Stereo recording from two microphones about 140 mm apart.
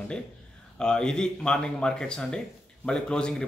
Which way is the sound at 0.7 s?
5° left (ahead or behind).